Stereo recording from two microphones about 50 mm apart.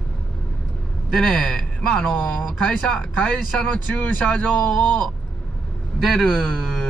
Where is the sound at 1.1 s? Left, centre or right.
Centre.